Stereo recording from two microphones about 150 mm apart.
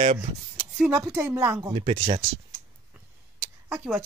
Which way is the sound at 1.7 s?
35° right (ahead or behind).